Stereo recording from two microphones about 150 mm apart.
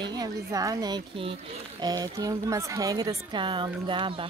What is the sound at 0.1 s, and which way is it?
A woman's voice, 25° right (ahead or behind).